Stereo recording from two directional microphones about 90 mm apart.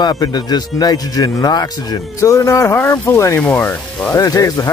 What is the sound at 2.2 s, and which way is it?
Speech, 35° left (ahead or behind).